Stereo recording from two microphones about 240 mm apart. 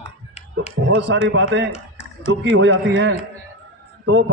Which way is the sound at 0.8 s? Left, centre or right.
Right.